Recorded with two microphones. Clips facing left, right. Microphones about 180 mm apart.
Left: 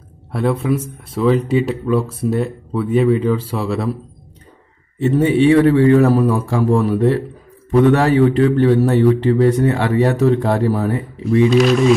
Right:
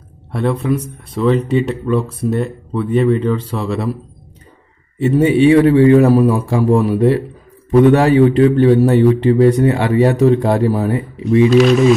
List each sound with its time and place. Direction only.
0.3 s speech: 5° left (ahead or behind)
4.9 s a man's voice: 10° right (ahead or behind)
11.5 s speech: centre (ahead or behind)